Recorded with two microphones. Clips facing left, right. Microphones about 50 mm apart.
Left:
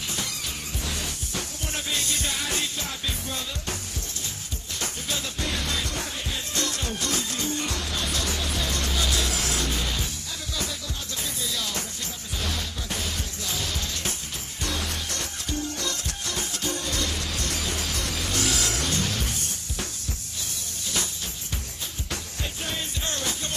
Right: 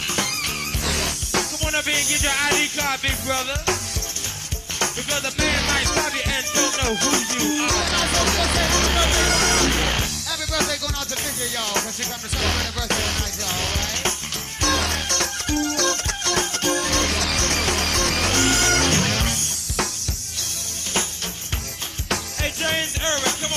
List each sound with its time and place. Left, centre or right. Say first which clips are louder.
0.1 s music: right 7 dB; right
4.7 s music: right 7 dB; right
6.5 s music: right 8 dB; right
11.5 s music: right 8 dB; right
12.4 s music: right 7 dB; right
14.6 s music: right 9 dB; right
18.4 s music: right 8 dB; right
22.1 s music: right 10 dB; right